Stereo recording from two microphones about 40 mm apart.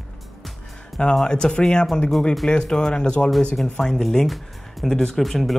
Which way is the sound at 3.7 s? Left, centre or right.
Centre.